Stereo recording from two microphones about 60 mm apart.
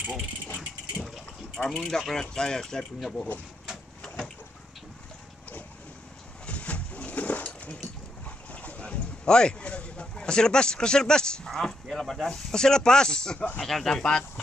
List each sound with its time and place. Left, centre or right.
0.6 s ratchet: centre
1.8 s speech: centre
6.4 s a sound: left
10.1 s speech: centre